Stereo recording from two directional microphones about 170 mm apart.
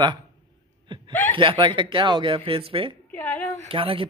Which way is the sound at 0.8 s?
25° right (ahead or behind).